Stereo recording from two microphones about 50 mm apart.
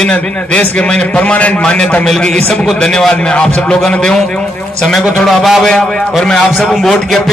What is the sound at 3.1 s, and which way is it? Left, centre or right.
A man's voice, centre.